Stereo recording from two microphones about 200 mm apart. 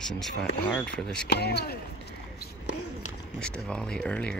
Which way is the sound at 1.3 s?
55° left (ahead or behind).